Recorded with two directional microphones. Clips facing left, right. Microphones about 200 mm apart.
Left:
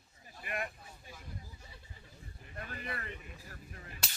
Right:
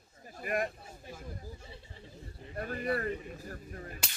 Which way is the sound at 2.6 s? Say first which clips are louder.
Right 11 dB; 40° right (ahead or behind).